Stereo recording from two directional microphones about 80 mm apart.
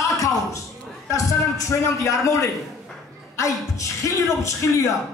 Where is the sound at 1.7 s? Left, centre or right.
Left.